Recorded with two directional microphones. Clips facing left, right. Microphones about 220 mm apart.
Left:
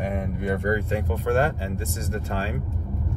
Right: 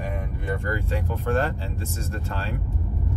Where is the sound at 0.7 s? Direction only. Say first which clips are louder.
Left 3 dB; 15° left (ahead or behind).